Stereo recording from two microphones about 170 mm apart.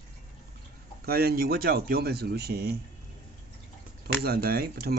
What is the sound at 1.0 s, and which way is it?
Speech, 65° right (ahead or behind).